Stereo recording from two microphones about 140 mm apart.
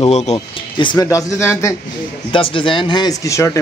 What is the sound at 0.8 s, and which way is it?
Speech, 35° left (ahead or behind).